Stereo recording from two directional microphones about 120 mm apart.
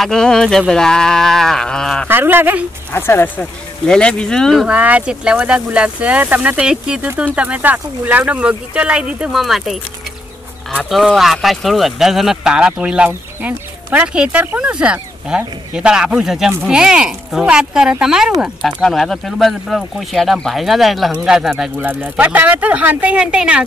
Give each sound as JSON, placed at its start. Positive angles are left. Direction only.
{"t": 0.0, "sound": "speech", "side_deg": 5}
{"t": 2.0, "sound": "speech", "side_deg": -15}
{"t": 2.9, "sound": "speech", "side_deg": 20}
{"t": 3.8, "sound": "speech", "side_deg": 5}
{"t": 4.7, "sound": "speech", "side_deg": -10}
{"t": 10.9, "sound": "speech", "side_deg": 0}